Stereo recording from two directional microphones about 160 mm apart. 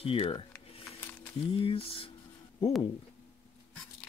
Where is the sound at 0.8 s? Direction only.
15° left (ahead or behind).